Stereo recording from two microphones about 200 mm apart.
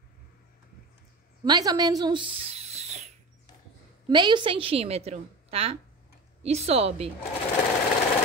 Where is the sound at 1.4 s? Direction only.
20° right (ahead or behind).